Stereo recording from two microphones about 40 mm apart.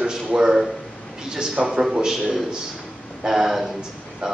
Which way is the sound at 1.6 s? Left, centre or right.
Centre.